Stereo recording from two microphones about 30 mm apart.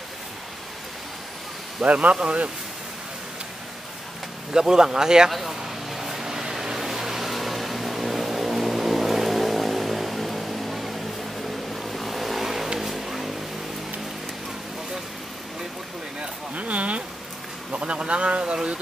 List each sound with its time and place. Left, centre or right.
1.9 s speech: right
2.1 s speech: right
4.6 s speech: right
5.9 s a sound: centre
6.8 s vehicle: centre
16.5 s a sound: right
17.6 s speech: right